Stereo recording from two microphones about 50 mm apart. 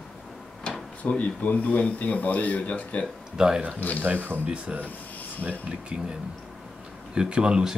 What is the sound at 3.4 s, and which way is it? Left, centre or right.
Speech, centre.